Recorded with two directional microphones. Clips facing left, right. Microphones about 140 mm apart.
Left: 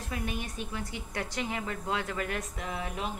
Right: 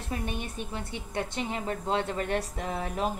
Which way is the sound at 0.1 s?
25° right (ahead or behind).